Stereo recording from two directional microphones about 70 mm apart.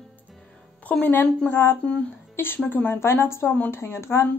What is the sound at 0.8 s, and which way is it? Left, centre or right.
A woman's voice, left.